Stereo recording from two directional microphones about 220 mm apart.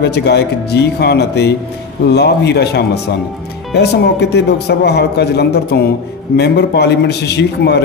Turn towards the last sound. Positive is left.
turn(degrees=50)  # may be behind; listen again after turning